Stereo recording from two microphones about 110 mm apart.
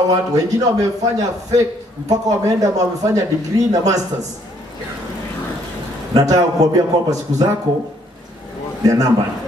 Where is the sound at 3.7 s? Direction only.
35° right (ahead or behind).